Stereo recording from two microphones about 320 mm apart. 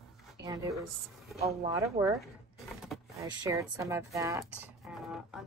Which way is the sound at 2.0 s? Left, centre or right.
Centre.